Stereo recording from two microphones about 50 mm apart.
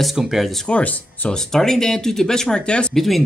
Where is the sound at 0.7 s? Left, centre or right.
Left.